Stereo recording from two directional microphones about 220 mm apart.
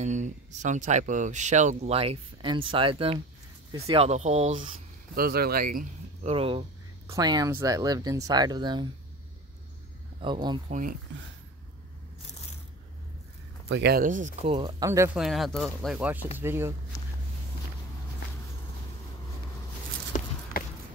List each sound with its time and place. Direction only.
0.0 s speech: 35° right (ahead or behind)
5.1 s speech: 45° right (ahead or behind)
6.3 s speech: 25° right (ahead or behind)
10.2 s speech: 20° right (ahead or behind)
10.7 s speech: 40° right (ahead or behind)
13.7 s speech: 50° right (ahead or behind); by 14.7 s 30° right (ahead or behind)
14.8 s speech: 15° right (ahead or behind)
15.1 s speech: centre (ahead or behind)
20.1 s a sound: 35° left (ahead or behind)